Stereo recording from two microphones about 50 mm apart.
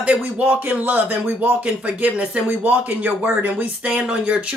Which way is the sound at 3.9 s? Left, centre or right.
Right.